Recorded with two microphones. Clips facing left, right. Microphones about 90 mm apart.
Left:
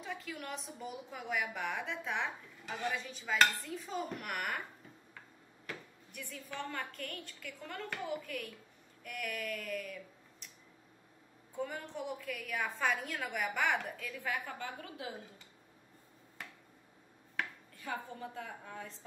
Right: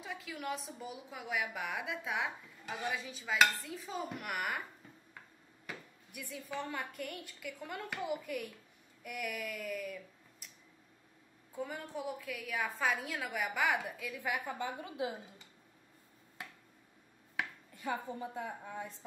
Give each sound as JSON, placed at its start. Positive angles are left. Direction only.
{"t": 0.0, "sound": "a woman's voice", "side_deg": 0}
{"t": 5.7, "sound": "a woman's voice", "side_deg": -10}
{"t": 11.5, "sound": "a woman's voice", "side_deg": -5}
{"t": 17.4, "sound": "a sound", "side_deg": -10}
{"t": 17.7, "sound": "a woman's voice", "side_deg": -20}